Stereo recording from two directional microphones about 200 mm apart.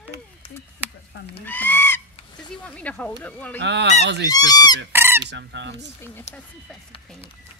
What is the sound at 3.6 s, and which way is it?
Speech, 60° right (ahead or behind).